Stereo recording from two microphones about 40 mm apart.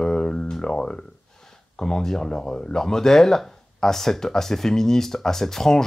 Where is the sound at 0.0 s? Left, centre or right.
Centre.